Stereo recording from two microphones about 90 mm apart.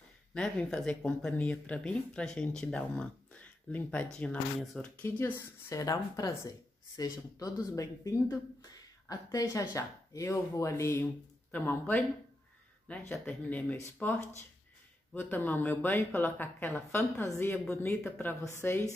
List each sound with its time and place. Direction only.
0.3 s speech: 10° left (ahead or behind)
5.0 s speech: 25° left (ahead or behind)
11.5 s speech: 20° left (ahead or behind)